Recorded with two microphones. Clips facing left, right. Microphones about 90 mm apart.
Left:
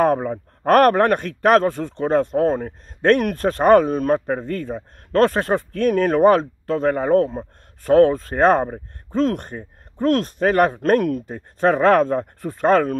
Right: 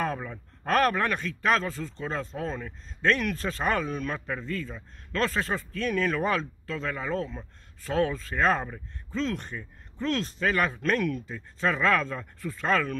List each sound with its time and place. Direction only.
0.0 s speech: 55° left (ahead or behind)